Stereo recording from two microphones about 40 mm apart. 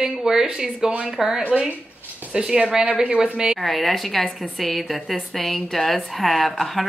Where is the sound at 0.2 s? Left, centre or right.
Centre.